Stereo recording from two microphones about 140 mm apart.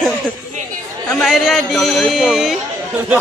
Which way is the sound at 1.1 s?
Centre (ahead or behind).